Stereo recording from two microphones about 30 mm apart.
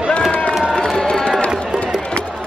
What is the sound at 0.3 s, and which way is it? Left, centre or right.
Run, left.